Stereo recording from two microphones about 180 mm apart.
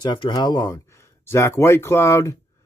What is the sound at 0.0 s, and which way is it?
A man's voice, 25° left (ahead or behind).